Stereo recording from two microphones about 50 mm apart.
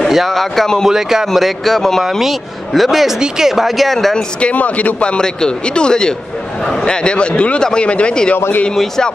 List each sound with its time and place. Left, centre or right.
0.1 s speech: centre
0.8 s speech: centre
4.4 s speech: left
8.7 s a man's voice: centre